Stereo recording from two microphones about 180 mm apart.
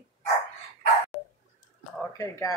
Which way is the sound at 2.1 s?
15° left (ahead or behind).